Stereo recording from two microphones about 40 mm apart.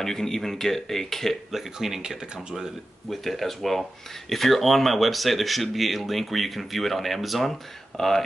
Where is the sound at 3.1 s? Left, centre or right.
Centre.